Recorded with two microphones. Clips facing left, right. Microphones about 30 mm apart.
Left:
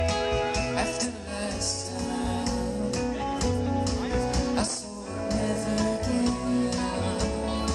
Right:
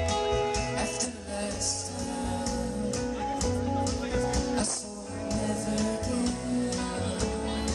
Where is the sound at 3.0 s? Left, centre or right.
Left.